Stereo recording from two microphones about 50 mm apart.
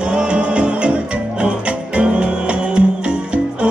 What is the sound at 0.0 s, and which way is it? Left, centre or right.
Music, centre.